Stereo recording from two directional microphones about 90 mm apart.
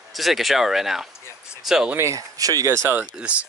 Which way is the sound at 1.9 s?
35° right (ahead or behind).